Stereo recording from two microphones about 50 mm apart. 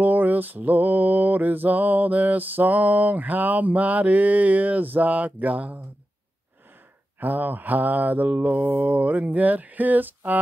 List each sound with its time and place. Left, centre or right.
0.0 s mantra: right
7.2 s mantra: right